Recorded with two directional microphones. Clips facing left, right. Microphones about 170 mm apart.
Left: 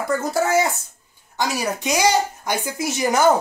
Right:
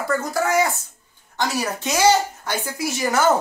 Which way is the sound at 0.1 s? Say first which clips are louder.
Left 2 dB; 25° left (ahead or behind).